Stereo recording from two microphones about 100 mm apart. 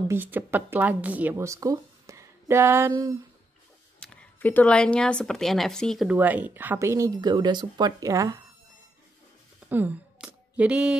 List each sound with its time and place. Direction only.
0.1 s speech: 20° right (ahead or behind)
1.3 s speech: 30° right (ahead or behind)
4.0 s speech: 15° left (ahead or behind)
6.0 s speech: 15° right (ahead or behind)
7.1 s speech: 40° right (ahead or behind)
8.0 s speech: 35° right (ahead or behind)
9.7 s a sound: 20° right (ahead or behind)